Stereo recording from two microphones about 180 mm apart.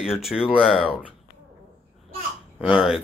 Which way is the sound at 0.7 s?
30° left (ahead or behind).